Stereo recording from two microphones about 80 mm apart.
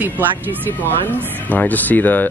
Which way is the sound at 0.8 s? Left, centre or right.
Left.